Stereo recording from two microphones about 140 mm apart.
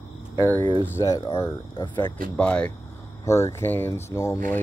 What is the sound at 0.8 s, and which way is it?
Speech, 20° left (ahead or behind).